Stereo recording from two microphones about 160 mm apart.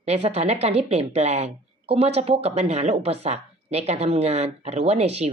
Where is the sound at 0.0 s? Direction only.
40° right (ahead or behind).